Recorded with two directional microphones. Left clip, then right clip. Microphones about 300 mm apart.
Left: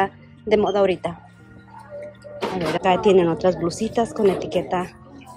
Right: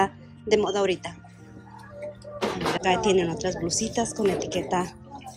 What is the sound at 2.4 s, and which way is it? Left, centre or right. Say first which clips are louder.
Speech: left 4 dB; centre.